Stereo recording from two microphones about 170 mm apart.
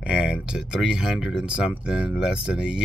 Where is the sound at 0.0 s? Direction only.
5° right (ahead or behind).